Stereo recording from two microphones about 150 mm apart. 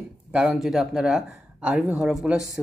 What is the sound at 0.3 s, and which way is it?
Speech, 5° right (ahead or behind).